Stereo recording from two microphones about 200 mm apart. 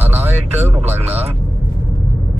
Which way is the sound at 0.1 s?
30° right (ahead or behind).